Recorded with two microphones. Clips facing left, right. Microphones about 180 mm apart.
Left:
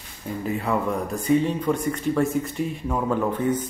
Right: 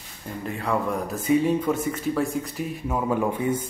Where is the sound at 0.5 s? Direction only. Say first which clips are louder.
Left 1 dB; centre (ahead or behind).